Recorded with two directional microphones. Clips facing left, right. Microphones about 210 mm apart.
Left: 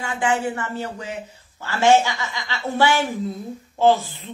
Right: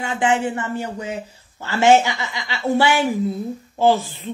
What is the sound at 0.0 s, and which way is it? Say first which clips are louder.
A child's voice: right 3 dB; 20° right (ahead or behind).